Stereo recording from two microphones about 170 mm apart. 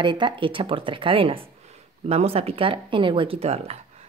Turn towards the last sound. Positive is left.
turn(degrees=-35)  # may be behind; listen again after turning